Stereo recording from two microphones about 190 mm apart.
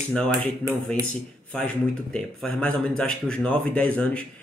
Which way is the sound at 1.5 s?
5° left (ahead or behind).